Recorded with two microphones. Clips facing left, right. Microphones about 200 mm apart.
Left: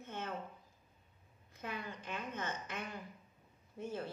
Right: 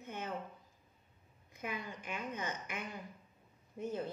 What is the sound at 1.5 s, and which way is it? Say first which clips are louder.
Speech: right 1 dB; 15° right (ahead or behind).